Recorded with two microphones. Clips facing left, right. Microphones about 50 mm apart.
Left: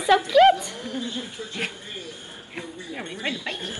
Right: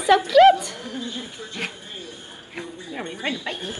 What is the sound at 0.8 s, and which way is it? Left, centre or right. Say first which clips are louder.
Speech: left 1 dB; right.